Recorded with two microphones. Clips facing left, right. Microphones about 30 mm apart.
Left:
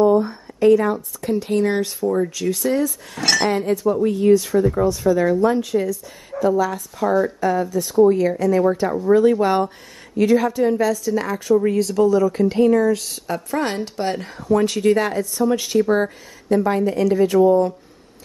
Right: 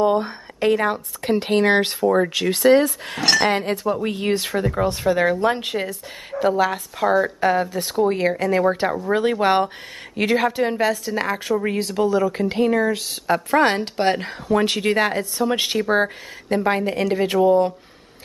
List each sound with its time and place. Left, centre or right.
0.0 s speech: right
2.4 s speech: right
13.3 s speech: right